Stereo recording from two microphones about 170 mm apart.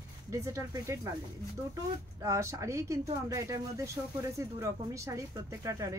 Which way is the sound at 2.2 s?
20° right (ahead or behind).